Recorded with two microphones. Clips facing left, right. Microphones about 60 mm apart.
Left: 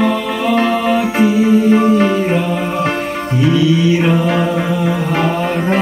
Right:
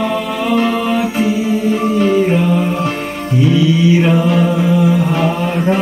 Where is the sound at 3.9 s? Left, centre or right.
Centre.